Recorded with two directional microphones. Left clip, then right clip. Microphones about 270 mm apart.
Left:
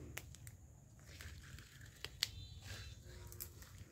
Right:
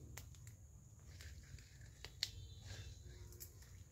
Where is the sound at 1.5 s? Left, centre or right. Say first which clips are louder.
Left 5 dB; left.